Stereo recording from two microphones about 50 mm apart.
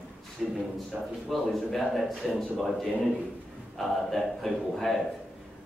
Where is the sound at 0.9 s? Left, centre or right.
Right.